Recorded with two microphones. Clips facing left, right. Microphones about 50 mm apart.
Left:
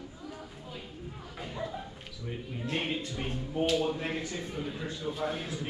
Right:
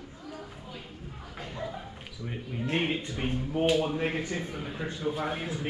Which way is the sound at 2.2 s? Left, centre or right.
Centre.